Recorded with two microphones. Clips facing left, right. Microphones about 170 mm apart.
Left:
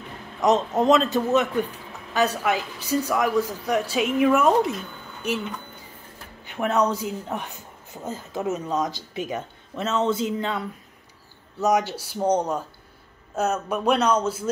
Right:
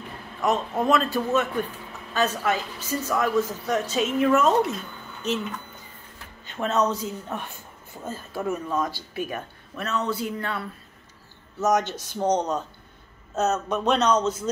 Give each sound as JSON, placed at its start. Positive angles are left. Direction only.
{"t": 0.4, "sound": "a woman's voice", "side_deg": 20}
{"t": 6.4, "sound": "a woman's voice", "side_deg": 15}